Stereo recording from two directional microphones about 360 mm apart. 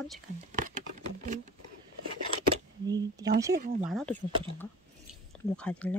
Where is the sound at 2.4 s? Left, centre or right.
Centre.